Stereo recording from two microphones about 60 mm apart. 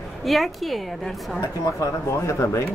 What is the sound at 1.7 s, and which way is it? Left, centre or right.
Speech, left.